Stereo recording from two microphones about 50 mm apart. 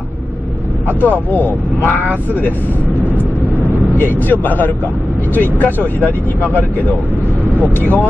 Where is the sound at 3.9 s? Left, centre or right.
Left.